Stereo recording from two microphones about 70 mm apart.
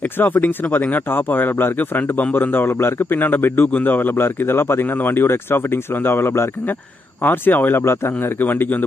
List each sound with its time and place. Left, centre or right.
0.2 s a man's voice: left